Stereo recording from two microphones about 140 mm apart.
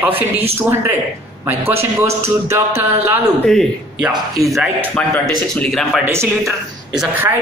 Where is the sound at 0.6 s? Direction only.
20° right (ahead or behind).